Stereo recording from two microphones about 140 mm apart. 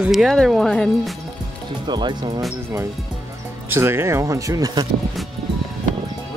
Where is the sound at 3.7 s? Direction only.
15° right (ahead or behind).